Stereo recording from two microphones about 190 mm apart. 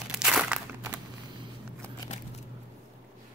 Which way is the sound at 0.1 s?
Centre (ahead or behind).